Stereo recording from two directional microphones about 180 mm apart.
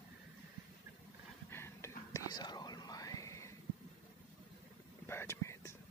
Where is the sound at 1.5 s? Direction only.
15° left (ahead or behind).